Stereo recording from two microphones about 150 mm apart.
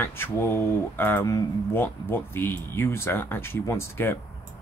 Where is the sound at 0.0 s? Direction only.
15° left (ahead or behind).